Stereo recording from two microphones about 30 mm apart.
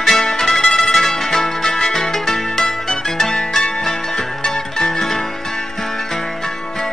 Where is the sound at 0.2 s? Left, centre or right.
Centre.